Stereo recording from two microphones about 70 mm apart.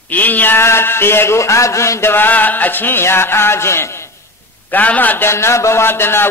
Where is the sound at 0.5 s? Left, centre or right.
Left.